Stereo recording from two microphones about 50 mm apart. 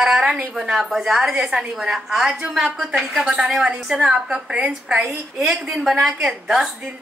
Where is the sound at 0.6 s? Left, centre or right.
Centre.